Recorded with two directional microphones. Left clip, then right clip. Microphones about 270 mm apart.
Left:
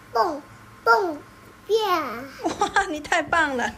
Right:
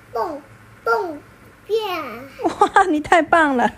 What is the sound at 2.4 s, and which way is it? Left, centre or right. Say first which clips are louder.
Speech: right 6 dB; left.